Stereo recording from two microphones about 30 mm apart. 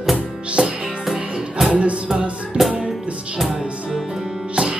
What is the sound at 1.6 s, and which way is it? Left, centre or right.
Music, right.